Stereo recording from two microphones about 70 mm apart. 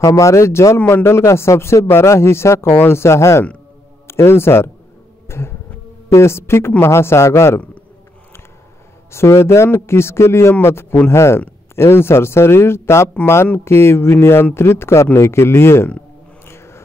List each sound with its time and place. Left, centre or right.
0.0 s speech: left
0.7 s speech: left
1.0 s speech: left
5.3 s insect: left
6.0 s speech: left
9.1 s speech: left
16.4 s a sound: left